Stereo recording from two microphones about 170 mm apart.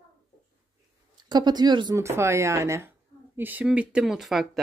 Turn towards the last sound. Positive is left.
turn(degrees=0)  # may be behind; listen again after turning